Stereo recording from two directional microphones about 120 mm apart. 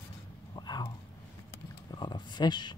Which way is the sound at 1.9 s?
40° left (ahead or behind).